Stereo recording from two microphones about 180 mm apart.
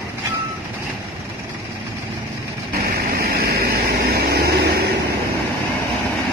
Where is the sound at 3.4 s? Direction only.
60° right (ahead or behind).